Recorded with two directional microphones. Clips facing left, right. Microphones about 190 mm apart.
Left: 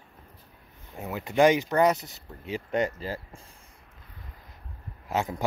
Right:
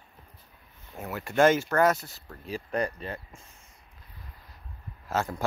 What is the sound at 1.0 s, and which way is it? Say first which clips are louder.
Speech: left 1 dB; 15° left (ahead or behind).